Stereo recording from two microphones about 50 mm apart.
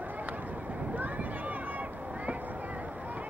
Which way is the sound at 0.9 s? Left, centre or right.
Right.